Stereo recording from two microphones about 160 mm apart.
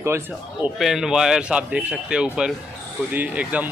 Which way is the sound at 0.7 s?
Centre (ahead or behind).